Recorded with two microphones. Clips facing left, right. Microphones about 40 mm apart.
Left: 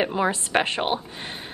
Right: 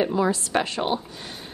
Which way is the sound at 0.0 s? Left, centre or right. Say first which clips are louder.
Right 1 dB; left.